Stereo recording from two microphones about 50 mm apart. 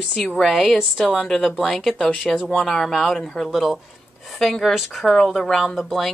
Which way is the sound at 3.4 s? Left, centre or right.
Centre.